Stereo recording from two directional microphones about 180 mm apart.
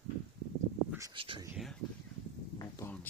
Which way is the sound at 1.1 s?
30° right (ahead or behind).